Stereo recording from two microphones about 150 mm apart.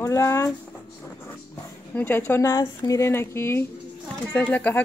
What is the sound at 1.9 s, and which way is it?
Speech, 15° left (ahead or behind).